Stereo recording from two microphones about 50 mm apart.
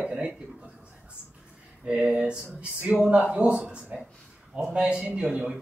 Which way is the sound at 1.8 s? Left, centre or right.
Right.